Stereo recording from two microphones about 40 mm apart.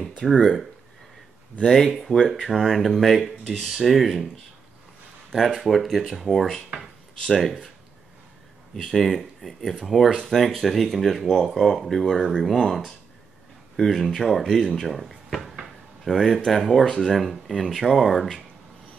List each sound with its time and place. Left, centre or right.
0.0 s speech: centre
2.1 s speech: left
2.4 s speech: centre
5.3 s speech: centre
8.7 s speech: centre